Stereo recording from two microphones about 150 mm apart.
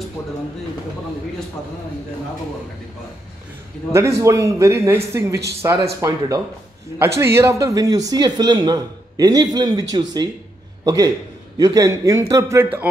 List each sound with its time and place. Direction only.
3.9 s a man's voice: 20° right (ahead or behind)